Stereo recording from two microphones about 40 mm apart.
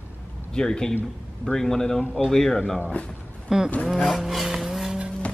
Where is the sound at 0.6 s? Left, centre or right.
Centre.